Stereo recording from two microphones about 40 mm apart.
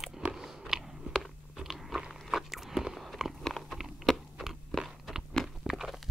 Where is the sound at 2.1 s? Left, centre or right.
Centre.